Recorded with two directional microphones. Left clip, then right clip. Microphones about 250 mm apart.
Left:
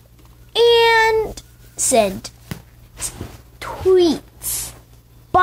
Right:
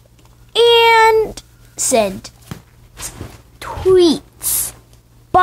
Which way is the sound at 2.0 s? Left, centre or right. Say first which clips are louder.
Right 1 dB; centre.